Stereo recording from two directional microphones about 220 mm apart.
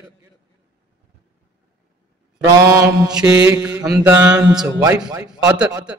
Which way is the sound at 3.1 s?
5° right (ahead or behind).